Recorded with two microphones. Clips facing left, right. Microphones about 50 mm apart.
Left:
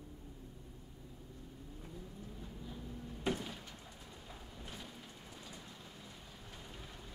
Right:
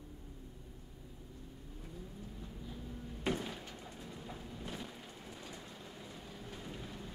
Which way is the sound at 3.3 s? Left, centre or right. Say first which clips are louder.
Right 3 dB; centre.